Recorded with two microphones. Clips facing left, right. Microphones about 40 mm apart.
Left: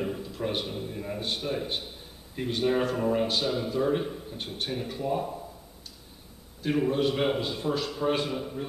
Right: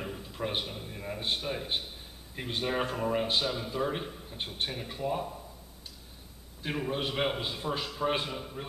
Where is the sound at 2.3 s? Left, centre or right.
Centre.